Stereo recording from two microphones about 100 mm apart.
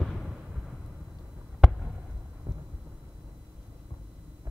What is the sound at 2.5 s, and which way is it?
Thunder, 30° right (ahead or behind).